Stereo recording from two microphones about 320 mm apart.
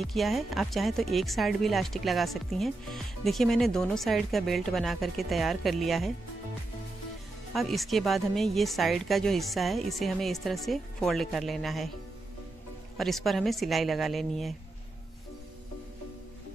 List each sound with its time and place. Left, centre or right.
0.0 s speech: centre
7.5 s speech: centre
12.9 s speech: centre